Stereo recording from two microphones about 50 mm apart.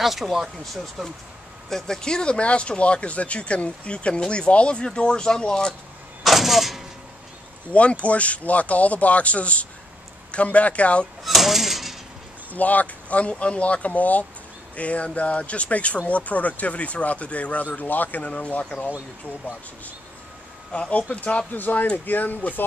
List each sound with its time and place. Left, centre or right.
0.0 s speech: centre
6.2 s a sound: centre
7.7 s speech: left
11.2 s a sound: centre
12.5 s speech: left
20.9 s speech: left